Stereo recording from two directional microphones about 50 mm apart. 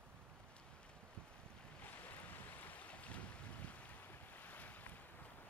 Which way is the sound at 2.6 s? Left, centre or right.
Left.